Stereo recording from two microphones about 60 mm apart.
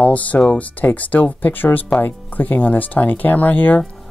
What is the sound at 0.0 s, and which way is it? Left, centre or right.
Speech, left.